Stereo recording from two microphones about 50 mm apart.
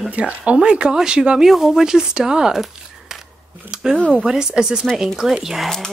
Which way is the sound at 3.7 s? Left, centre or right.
Centre.